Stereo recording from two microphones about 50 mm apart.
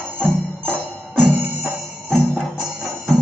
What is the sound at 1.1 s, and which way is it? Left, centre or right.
Music, centre.